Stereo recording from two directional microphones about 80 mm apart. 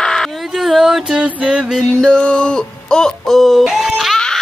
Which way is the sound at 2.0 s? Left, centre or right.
Centre.